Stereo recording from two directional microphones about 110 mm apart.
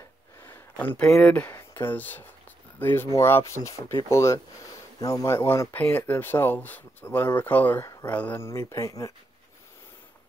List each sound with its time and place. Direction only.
0.4 s a sound: 20° left (ahead or behind)
1.2 s speech: 15° left (ahead or behind)
7.8 s speech: 25° left (ahead or behind)
8.1 s speech: 15° left (ahead or behind)
8.5 s speech: 25° left (ahead or behind)